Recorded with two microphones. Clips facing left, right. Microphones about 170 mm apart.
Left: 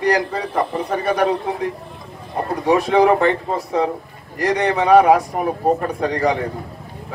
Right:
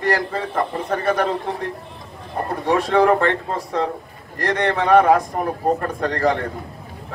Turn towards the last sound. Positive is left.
turn(degrees=5)  # may be behind; listen again after turning